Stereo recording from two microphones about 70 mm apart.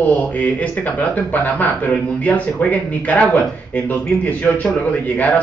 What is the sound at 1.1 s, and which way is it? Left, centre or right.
Speech, left.